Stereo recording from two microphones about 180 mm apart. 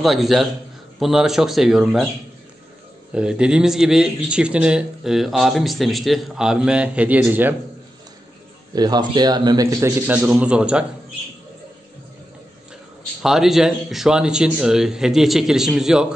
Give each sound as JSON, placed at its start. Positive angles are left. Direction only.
{"t": 0.0, "sound": "speech", "side_deg": 0}
{"t": 3.1, "sound": "speech", "side_deg": -5}
{"t": 8.7, "sound": "a man's voice", "side_deg": -20}
{"t": 13.2, "sound": "speech", "side_deg": 0}